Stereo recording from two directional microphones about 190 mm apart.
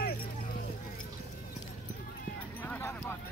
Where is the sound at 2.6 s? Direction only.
10° left (ahead or behind).